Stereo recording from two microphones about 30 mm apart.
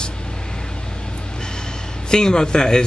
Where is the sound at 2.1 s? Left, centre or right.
Left.